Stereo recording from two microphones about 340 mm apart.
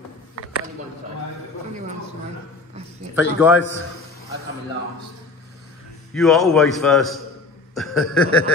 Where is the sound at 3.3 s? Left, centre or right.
Centre.